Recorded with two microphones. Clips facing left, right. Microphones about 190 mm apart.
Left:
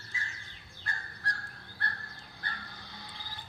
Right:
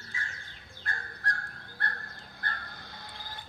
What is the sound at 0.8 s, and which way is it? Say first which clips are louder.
Fowl: right 3 dB; 55° right (ahead or behind).